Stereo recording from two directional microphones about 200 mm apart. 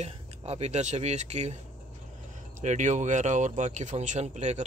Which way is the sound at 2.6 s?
35° right (ahead or behind).